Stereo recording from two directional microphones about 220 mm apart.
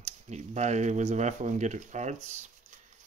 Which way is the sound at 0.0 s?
30° right (ahead or behind).